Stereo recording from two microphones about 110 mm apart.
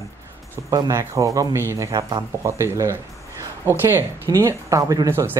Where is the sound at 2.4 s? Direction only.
25° right (ahead or behind).